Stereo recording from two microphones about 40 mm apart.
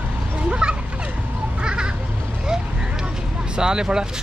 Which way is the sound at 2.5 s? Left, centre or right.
Centre.